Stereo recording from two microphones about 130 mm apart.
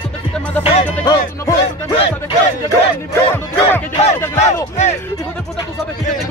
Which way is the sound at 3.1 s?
20° left (ahead or behind).